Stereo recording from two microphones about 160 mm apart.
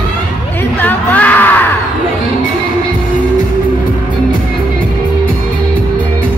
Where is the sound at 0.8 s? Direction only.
10° left (ahead or behind).